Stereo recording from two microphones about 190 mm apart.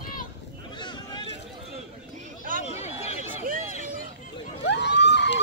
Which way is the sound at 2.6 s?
35° left (ahead or behind).